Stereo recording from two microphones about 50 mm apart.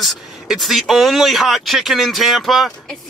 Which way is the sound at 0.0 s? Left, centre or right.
Centre.